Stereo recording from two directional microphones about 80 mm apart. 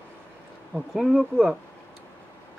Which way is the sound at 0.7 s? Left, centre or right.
Centre.